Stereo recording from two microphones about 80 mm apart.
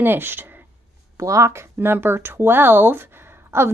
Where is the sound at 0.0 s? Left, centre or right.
Right.